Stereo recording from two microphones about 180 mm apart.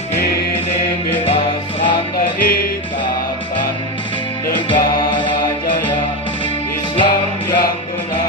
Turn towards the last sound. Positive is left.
turn(degrees=30)  # may be behind; listen again after turning